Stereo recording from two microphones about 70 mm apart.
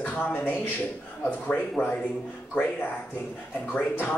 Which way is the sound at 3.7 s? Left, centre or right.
Left.